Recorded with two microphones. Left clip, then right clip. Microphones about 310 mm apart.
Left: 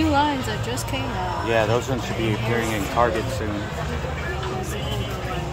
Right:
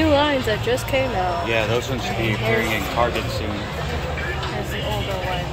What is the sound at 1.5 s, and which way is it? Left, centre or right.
Speech, left.